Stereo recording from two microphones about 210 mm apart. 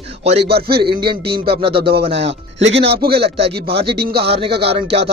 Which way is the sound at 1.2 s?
50° right (ahead or behind).